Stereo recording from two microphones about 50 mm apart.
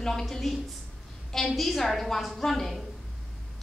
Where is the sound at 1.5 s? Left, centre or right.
Centre.